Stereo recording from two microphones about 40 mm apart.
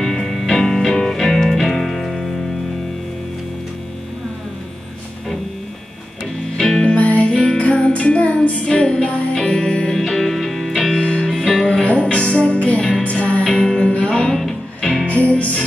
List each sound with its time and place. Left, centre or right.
0.0 s music: centre
6.6 s music: centre
7.0 s music: left; by 9.9 s centre
9.9 s music: centre
11.0 s music: left
15.0 s music: left